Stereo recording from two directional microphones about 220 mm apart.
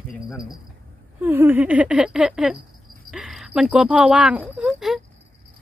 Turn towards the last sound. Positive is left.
turn(degrees=0)  # may be behind; listen again after turning